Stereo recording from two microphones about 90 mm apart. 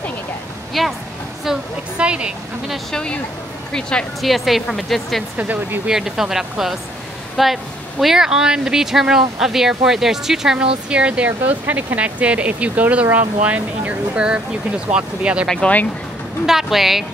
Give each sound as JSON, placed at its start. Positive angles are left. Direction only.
{"t": 0.8, "sound": "speech", "side_deg": 0}
{"t": 1.4, "sound": "a sound", "side_deg": -10}
{"t": 2.9, "sound": "speech", "side_deg": 10}
{"t": 5.4, "sound": "speech", "side_deg": -20}
{"t": 5.9, "sound": "speech", "side_deg": -5}
{"t": 15.4, "sound": "speech", "side_deg": 10}
{"t": 16.4, "sound": "speech", "side_deg": -5}